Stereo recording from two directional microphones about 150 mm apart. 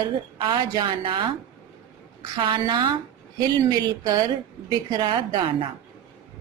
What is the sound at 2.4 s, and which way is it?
A woman's voice, 30° right (ahead or behind).